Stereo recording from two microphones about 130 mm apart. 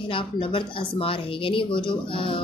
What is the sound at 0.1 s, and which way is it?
Speech, 40° left (ahead or behind).